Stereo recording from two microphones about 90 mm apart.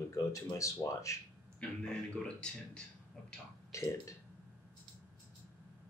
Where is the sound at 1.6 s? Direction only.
15° left (ahead or behind).